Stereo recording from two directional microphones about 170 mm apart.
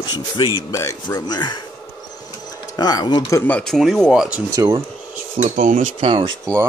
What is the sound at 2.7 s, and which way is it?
Speech, 25° left (ahead or behind).